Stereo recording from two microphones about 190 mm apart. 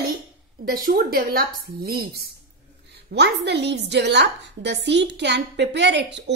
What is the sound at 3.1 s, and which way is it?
Speech, 65° right (ahead or behind).